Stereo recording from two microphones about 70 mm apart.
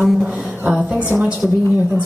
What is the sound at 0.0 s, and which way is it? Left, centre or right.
A woman's voice, centre.